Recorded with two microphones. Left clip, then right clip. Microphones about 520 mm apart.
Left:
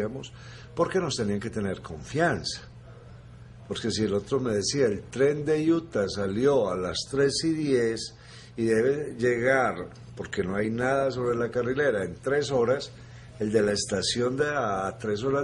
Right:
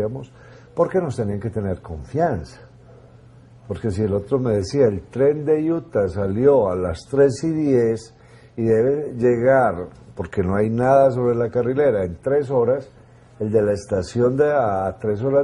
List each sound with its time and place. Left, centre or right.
0.7 s a man's voice: right
3.7 s a man's voice: right